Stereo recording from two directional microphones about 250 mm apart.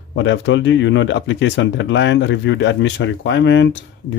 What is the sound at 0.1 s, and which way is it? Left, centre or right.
Speech, left.